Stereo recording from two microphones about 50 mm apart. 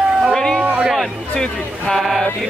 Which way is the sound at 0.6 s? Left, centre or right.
Right.